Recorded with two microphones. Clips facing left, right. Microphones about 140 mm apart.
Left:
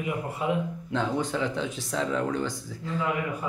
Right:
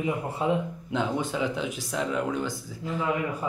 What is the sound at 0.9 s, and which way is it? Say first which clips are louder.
Speech: even; 15° right (ahead or behind).